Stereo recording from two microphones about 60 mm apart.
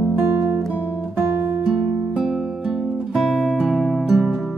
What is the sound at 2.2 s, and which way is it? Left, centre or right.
Music, centre.